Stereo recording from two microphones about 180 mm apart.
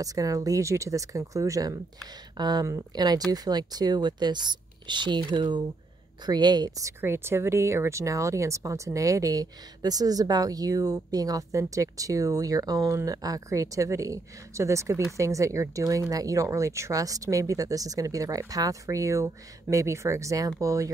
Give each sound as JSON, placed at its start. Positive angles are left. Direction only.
{"t": 0.0, "sound": "speech", "side_deg": -20}